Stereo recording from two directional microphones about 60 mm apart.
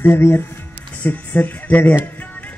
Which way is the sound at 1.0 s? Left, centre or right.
Left.